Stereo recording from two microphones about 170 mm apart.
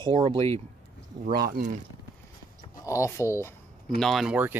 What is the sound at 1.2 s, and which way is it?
Speech, 60° right (ahead or behind).